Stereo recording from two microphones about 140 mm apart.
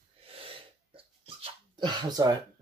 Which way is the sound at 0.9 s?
35° right (ahead or behind).